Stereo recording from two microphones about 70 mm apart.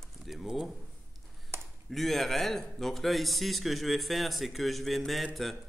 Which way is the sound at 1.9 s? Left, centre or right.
Centre.